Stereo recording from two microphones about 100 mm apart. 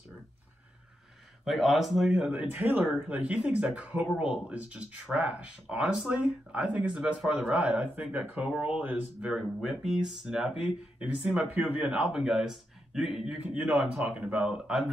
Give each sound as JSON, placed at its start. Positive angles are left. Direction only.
{"t": 1.4, "sound": "speech", "side_deg": 0}
{"t": 2.5, "sound": "speech", "side_deg": -20}
{"t": 9.3, "sound": "speech", "side_deg": -5}